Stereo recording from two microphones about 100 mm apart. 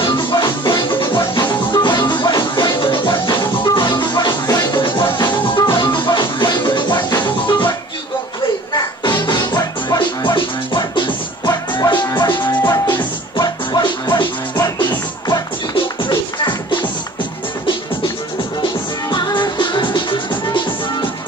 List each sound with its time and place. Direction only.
0.0 s music: 50° left (ahead or behind)
8.7 s music: 45° left (ahead or behind)
18.6 s music: 50° left (ahead or behind)